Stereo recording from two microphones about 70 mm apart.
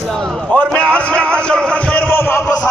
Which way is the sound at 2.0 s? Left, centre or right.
Left.